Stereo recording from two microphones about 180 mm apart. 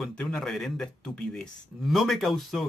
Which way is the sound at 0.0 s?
5° left (ahead or behind).